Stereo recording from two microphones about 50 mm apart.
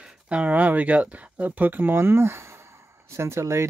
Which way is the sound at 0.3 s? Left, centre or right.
Right.